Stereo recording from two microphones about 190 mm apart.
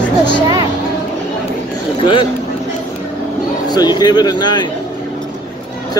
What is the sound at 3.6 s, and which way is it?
Speech, 20° left (ahead or behind).